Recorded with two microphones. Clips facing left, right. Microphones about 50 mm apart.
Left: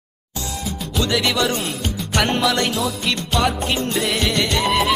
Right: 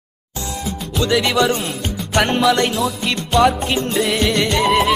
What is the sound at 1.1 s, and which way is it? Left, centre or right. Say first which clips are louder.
Music: right 5 dB; centre.